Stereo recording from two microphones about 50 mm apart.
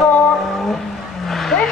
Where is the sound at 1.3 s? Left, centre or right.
Centre.